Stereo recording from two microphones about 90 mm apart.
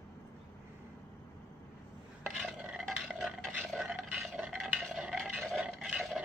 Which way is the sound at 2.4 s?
10° right (ahead or behind).